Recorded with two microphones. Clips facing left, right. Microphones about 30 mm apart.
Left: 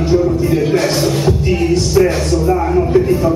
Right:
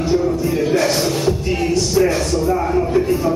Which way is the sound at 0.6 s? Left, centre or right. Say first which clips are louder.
Left 2 dB; centre.